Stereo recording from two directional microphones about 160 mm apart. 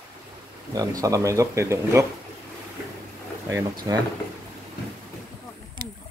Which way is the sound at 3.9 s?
25° right (ahead or behind).